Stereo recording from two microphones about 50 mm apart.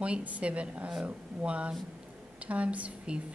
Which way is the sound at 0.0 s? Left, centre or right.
Right.